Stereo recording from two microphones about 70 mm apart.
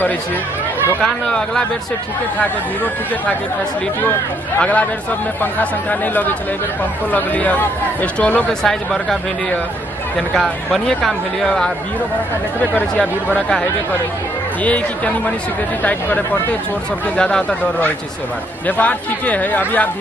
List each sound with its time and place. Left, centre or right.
1.0 s speech: centre
4.6 s speech: centre
8.5 s speech: centre
10.3 s speech: centre
14.6 s speech: left
17.2 s speech: centre
18.7 s speech: left